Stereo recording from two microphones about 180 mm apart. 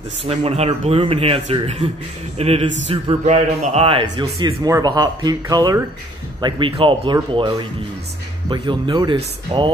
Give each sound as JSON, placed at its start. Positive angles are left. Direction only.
{"t": 0.3, "sound": "a man's voice", "side_deg": -35}
{"t": 8.5, "sound": "a man's voice", "side_deg": -25}